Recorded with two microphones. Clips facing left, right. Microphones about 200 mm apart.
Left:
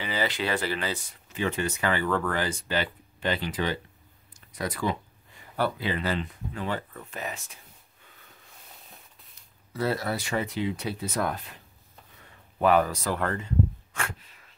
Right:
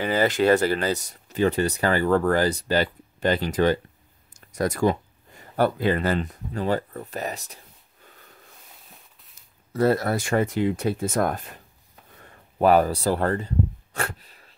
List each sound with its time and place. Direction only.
0.0 s speech: 50° right (ahead or behind)
9.7 s speech: 50° right (ahead or behind)
13.9 s a sound: 35° right (ahead or behind)